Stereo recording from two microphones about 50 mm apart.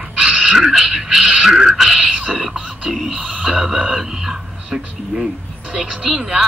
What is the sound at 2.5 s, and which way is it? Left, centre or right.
Speech, centre.